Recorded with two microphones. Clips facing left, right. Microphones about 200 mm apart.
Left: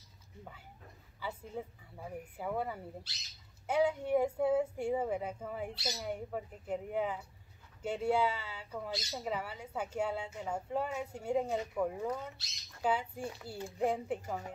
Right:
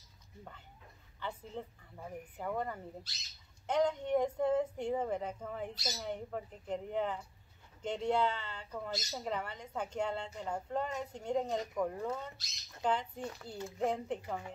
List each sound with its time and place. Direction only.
1.2 s speech: 10° left (ahead or behind)